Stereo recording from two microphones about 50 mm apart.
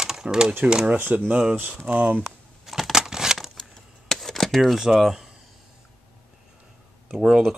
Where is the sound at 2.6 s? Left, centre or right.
Centre.